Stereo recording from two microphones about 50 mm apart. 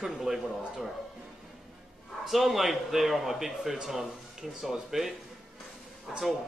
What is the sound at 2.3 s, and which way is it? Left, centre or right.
A man's voice, centre.